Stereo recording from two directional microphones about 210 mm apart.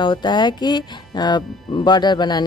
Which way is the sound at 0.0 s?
20° left (ahead or behind).